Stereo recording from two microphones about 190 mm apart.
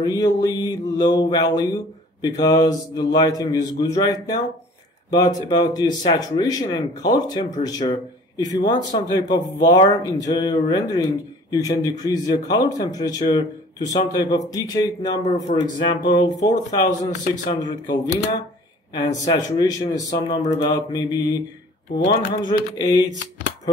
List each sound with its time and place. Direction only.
0.0 s speech: 20° left (ahead or behind)
18.9 s speech: 20° left (ahead or behind)